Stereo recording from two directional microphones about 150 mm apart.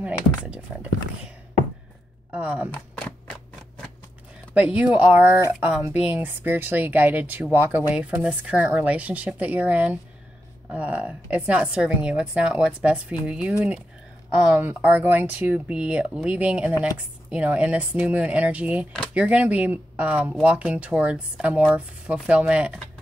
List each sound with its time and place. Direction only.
0.0 s speech: 10° right (ahead or behind)
2.3 s speech: 10° right (ahead or behind)
4.6 s speech: 10° right (ahead or behind)